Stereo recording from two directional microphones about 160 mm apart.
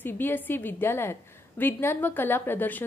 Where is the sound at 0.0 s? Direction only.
10° left (ahead or behind).